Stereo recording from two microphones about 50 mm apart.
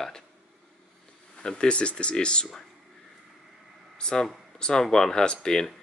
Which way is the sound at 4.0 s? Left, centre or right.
Centre.